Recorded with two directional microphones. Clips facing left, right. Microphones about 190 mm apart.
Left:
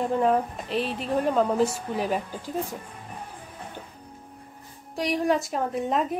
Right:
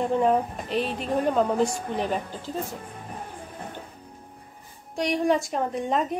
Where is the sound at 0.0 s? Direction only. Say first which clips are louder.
Right 1 dB; centre (ahead or behind).